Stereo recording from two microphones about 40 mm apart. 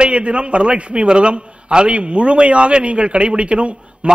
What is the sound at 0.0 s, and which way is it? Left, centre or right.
A man's voice, right.